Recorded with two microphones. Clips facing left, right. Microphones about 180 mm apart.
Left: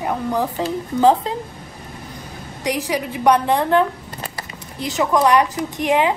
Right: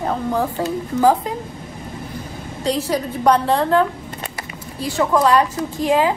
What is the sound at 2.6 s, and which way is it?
A woman's voice, 15° left (ahead or behind).